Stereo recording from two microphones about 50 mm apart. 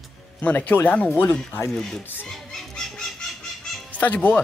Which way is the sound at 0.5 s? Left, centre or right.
Left.